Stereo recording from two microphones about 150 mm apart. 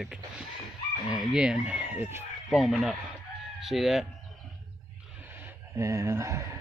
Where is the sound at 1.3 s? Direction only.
5° right (ahead or behind).